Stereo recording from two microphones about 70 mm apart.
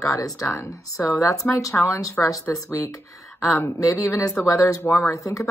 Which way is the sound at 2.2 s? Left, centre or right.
Left.